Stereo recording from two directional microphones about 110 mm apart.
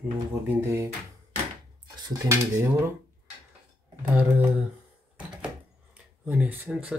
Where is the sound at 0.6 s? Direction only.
25° right (ahead or behind).